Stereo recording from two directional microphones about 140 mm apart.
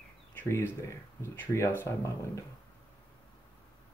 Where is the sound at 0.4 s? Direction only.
20° left (ahead or behind).